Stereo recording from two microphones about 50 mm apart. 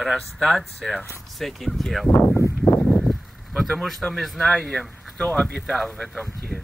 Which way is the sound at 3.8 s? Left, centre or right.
Centre.